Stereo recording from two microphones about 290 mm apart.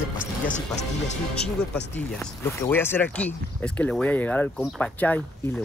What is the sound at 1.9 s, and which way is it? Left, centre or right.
Speech, centre.